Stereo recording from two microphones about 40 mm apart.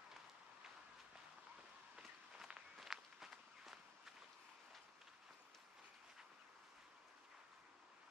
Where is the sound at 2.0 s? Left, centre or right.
Centre.